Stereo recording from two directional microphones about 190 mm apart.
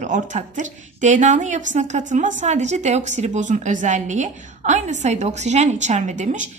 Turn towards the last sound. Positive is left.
turn(degrees=-40)  # may be behind; listen again after turning